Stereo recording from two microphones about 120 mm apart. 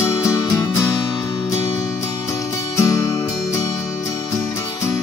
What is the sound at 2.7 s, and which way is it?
Music, 30° left (ahead or behind).